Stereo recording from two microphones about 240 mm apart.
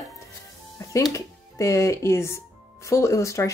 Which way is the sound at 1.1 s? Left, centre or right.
Centre.